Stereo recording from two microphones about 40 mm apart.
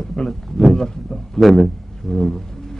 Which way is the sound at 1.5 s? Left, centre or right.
Centre.